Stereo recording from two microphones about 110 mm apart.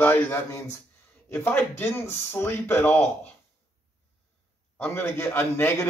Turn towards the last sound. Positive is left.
turn(degrees=20)  # may be behind; listen again after turning